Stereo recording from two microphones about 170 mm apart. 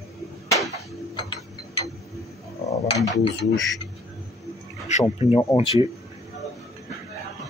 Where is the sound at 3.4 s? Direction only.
90° left.